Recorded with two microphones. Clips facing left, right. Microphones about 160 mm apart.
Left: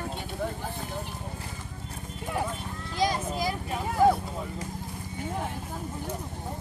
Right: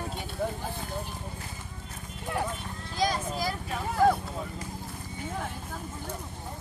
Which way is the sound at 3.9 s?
5° left (ahead or behind).